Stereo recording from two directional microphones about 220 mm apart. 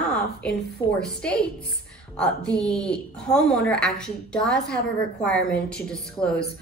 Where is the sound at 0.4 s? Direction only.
5° left (ahead or behind).